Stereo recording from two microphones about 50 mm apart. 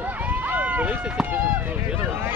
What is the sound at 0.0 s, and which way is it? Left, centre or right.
Run, right.